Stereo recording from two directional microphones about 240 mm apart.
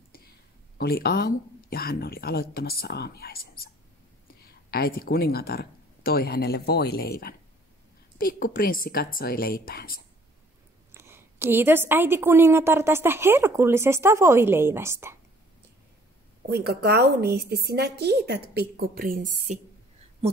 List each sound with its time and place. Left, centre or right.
0.7 s speech: left
10.9 s a woman's voice: centre
16.4 s a woman's voice: right